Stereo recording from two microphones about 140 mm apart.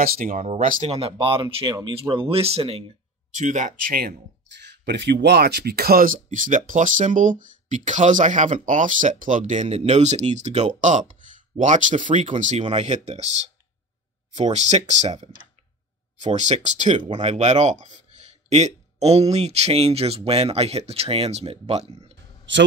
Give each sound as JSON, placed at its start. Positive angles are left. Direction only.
{"t": 0.0, "sound": "speech", "side_deg": -75}
{"t": 0.8, "sound": "speech", "side_deg": -45}
{"t": 3.3, "sound": "speech", "side_deg": -60}
{"t": 5.7, "sound": "speech", "side_deg": -90}